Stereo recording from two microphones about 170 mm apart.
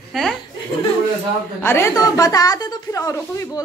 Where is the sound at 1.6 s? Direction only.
15° left (ahead or behind).